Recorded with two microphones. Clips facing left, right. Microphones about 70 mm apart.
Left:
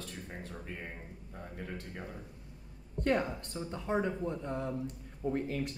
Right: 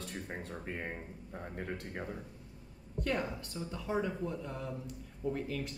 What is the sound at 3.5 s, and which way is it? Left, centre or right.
Speech, left.